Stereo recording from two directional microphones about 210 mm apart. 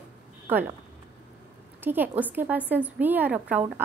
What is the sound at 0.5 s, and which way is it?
Speech, 10° right (ahead or behind).